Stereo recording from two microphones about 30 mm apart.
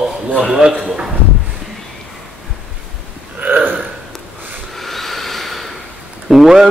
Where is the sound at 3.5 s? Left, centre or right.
Right.